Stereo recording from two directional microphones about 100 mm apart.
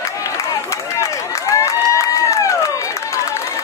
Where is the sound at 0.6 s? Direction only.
30° left (ahead or behind).